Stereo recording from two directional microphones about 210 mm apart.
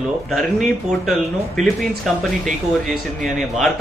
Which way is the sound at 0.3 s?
Centre (ahead or behind).